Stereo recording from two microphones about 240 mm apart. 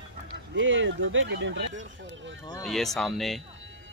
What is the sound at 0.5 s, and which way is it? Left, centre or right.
Speech, right.